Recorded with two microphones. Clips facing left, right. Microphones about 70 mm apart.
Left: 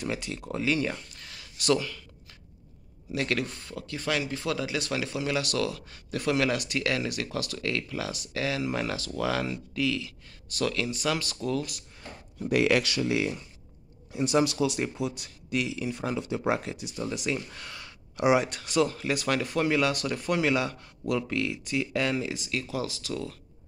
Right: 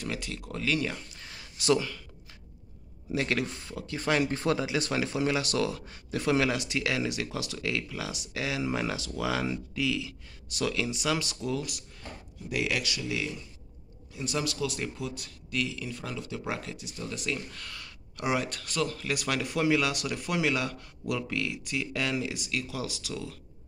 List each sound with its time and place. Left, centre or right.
0.0 s speech: centre
1.1 s a sound: right
3.1 s speech: centre
4.3 s speech: right; by 11.8 s centre
12.4 s speech: left
13.1 s speech: left
14.1 s speech: left; by 23.3 s centre